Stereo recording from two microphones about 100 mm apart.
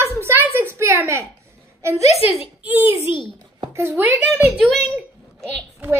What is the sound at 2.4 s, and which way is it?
A child's voice, 15° right (ahead or behind).